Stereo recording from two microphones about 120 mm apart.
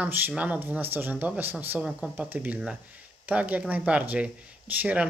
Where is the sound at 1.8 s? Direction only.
5° right (ahead or behind).